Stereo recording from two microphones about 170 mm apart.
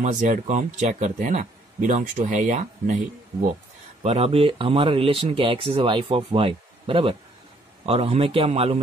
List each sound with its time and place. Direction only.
0.0 s speech: 45° right (ahead or behind)
4.0 s speech: 40° right (ahead or behind)